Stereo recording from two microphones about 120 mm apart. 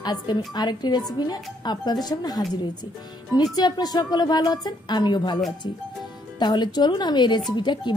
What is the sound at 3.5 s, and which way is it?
A woman's voice, 35° left (ahead or behind).